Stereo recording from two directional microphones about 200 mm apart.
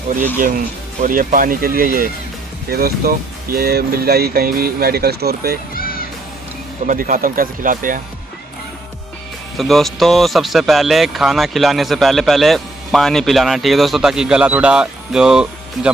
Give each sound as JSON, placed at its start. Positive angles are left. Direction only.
{"t": 0.1, "sound": "speech", "side_deg": -40}
{"t": 5.8, "sound": "music", "side_deg": 45}
{"t": 6.9, "sound": "speech", "side_deg": -45}
{"t": 9.6, "sound": "speech", "side_deg": 0}